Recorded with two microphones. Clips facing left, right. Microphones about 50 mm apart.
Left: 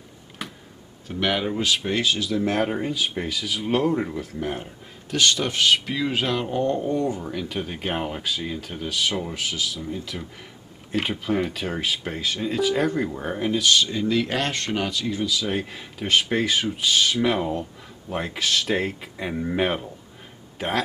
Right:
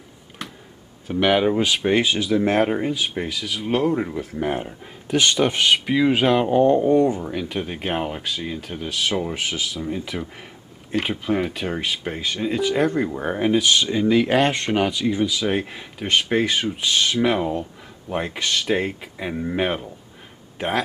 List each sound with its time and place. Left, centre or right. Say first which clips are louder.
0.4 s a sound: even; centre
1.0 s speech: right 6 dB; centre
4.2 s speech: right 5 dB; centre
9.3 s speech: right 2 dB; right
10.9 s speech: right 2 dB; centre